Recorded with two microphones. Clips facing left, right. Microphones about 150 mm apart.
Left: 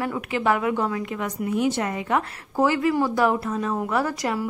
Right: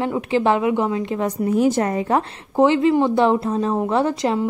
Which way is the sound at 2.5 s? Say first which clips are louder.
Right 5 dB; 25° right (ahead or behind).